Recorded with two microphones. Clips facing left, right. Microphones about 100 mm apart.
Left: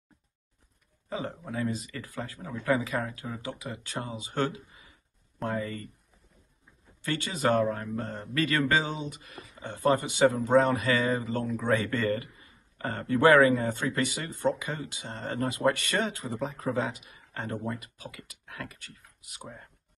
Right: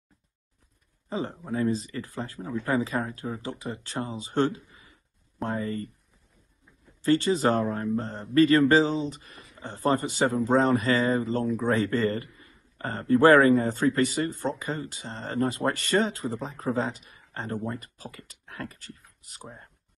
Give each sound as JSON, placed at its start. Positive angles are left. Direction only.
{"t": 1.5, "sound": "speech", "side_deg": -30}
{"t": 7.0, "sound": "speech", "side_deg": -35}